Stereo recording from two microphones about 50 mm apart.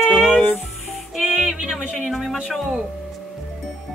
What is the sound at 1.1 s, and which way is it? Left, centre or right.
Music, centre.